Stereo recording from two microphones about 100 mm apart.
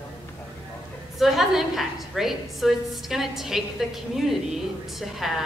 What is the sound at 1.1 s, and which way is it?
A woman's voice, centre (ahead or behind).